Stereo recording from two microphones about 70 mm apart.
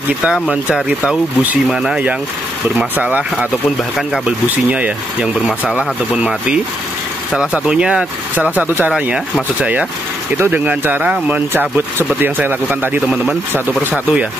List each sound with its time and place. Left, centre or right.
0.2 s speech: centre
1.7 s speech: centre
3.0 s speech: right
4.6 s speech: centre
8.4 s speech: right